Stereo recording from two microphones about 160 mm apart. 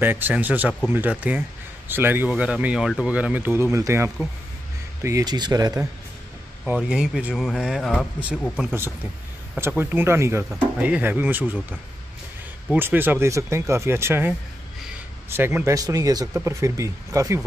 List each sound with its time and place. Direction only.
0.0 s speech: 10° right (ahead or behind)
6.6 s speech: 5° right (ahead or behind)
9.6 s speech: 15° right (ahead or behind)
12.7 s speech: 15° right (ahead or behind)